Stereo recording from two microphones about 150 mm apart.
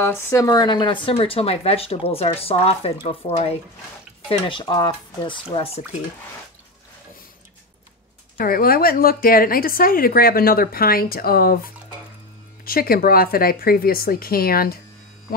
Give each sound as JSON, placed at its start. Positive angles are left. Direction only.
{"t": 0.0, "sound": "speech", "side_deg": 15}
{"t": 8.4, "sound": "speech", "side_deg": 80}